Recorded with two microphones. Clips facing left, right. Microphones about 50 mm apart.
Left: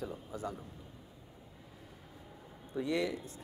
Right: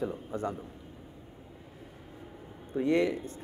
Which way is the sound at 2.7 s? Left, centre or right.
Right.